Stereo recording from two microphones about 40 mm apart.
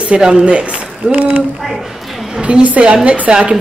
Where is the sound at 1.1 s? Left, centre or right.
Right.